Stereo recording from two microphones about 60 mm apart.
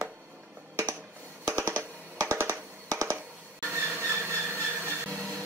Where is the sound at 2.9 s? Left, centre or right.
Right.